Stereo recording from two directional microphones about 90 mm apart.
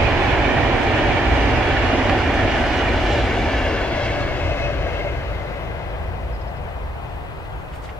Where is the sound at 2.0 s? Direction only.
Centre (ahead or behind); by 5.2 s 30° left (ahead or behind).